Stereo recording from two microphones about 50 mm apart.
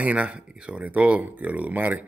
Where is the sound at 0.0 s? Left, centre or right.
Right.